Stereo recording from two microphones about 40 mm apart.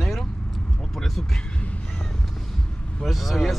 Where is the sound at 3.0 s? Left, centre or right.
Centre.